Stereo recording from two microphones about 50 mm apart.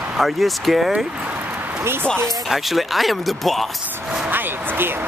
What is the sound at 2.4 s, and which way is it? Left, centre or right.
Speech, centre.